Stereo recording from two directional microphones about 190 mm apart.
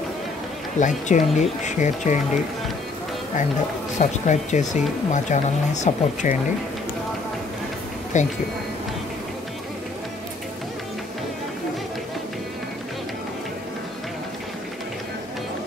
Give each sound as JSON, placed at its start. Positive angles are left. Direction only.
{"t": 0.7, "sound": "speech", "side_deg": 40}
{"t": 4.0, "sound": "speech", "side_deg": 40}
{"t": 8.1, "sound": "speech", "side_deg": 40}